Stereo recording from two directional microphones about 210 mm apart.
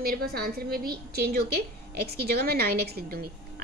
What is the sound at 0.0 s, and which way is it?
A woman's voice, 45° right (ahead or behind).